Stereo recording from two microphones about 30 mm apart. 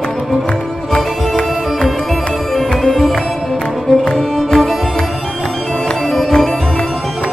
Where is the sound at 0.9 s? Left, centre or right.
Left.